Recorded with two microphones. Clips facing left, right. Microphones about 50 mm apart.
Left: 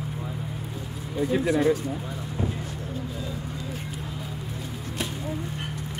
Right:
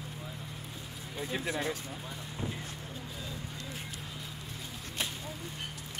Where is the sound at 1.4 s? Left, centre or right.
Left.